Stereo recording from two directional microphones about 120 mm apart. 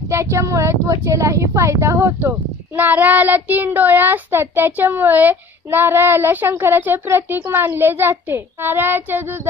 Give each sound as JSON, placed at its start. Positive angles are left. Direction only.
{"t": 0.1, "sound": "a woman's voice", "side_deg": -25}